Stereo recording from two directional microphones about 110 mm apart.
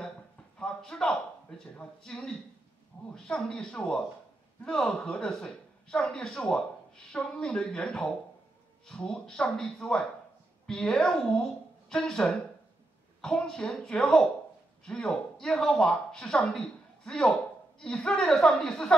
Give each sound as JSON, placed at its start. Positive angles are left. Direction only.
{"t": 0.6, "sound": "a sound", "side_deg": 5}
{"t": 1.6, "sound": "speech", "side_deg": 5}
{"t": 2.9, "sound": "a man's voice", "side_deg": 40}
{"t": 3.3, "sound": "a woman's voice", "side_deg": 5}